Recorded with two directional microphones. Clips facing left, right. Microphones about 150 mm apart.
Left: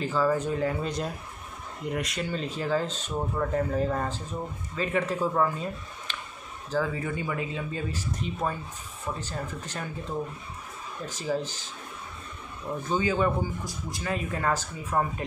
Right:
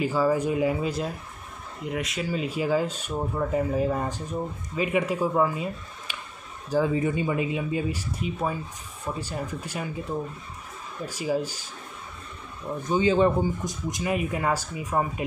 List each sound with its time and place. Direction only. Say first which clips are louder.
0.0 s speech: right 2 dB; 10° right (ahead or behind)
12.8 s speech: right 5 dB; 20° right (ahead or behind)